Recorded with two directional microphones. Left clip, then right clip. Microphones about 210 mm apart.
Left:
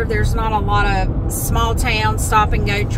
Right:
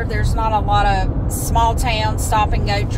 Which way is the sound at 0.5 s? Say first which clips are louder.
Right 2 dB; 15° left (ahead or behind).